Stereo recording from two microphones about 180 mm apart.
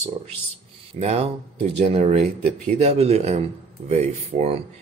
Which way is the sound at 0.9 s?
35° right (ahead or behind).